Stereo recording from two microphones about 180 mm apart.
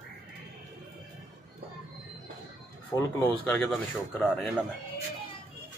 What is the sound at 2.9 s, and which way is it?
Speech, 10° left (ahead or behind).